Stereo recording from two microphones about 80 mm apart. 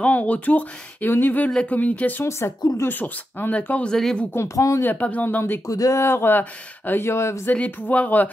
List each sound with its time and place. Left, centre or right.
0.0 s speech: centre
2.2 s speech: left; by 4.3 s centre
4.3 s speech: left
4.8 s speech: centre
5.7 s speech: left
6.0 s speech: left
7.4 s speech: left